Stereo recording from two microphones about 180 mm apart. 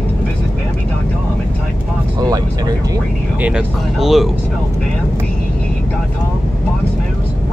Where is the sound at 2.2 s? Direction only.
20° right (ahead or behind).